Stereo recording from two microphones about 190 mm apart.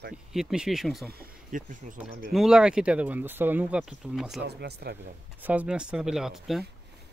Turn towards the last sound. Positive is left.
turn(degrees=0)  # may be behind; listen again after turning